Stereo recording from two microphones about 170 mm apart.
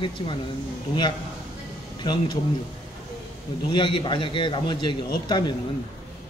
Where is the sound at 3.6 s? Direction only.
30° left (ahead or behind).